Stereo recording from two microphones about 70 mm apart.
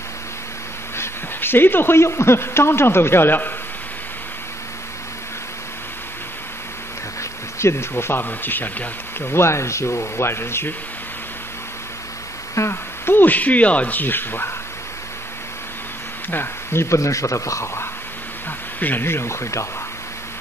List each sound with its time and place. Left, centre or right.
0.9 s speech: left
7.5 s speech: left
12.5 s speech: left
16.3 s a man's voice: left
18.8 s speech: left